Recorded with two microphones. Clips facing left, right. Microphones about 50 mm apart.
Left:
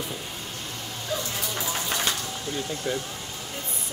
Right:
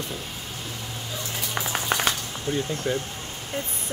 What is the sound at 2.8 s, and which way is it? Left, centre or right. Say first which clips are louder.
Speech: right 2 dB; centre.